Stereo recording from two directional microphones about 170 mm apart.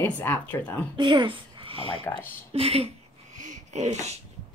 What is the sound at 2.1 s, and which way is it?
Speech, 20° left (ahead or behind).